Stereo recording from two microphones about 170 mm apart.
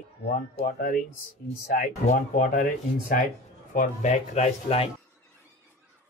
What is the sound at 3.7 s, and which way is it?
Speech, 45° left (ahead or behind).